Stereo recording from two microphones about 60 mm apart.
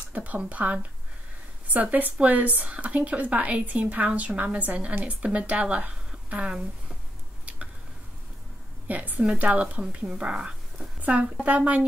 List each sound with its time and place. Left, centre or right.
0.1 s speech: right
7.4 s a sound: right
8.8 s a woman's voice: right
11.0 s speech: right